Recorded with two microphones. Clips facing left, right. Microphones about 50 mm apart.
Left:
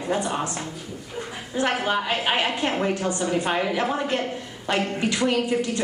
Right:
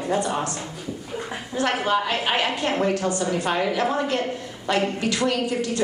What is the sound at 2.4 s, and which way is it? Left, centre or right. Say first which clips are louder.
Speech: right 1 dB; left.